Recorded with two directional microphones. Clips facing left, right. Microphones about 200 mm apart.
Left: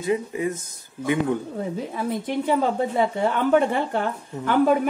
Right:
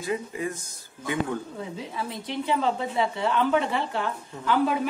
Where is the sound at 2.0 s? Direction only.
50° left (ahead or behind).